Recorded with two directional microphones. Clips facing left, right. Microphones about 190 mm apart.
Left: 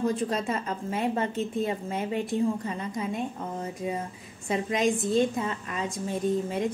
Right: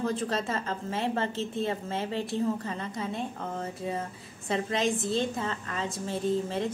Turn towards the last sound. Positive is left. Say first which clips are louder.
# left 2 dB
turn(degrees=15)  # may be behind; listen again after turning